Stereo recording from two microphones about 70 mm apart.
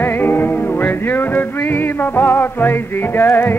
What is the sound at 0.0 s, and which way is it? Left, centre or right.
Music, left.